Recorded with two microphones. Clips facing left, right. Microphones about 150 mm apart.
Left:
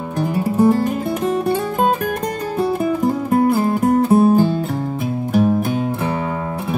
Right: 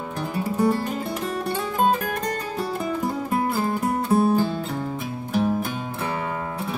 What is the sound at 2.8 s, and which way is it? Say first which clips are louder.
Music: left 8 dB; 50° left (ahead or behind).